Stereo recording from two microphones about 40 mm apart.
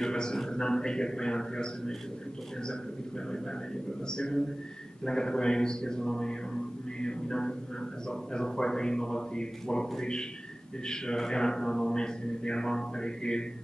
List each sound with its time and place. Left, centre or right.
0.0 s speech: centre
4.1 s speech: centre